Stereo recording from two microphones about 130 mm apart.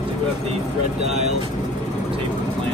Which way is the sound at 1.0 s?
60° right (ahead or behind).